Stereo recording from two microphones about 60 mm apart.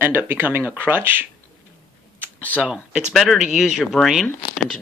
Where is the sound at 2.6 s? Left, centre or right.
Centre.